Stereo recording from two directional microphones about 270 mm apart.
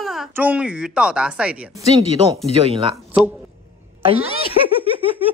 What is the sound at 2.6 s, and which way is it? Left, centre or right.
Speech, right.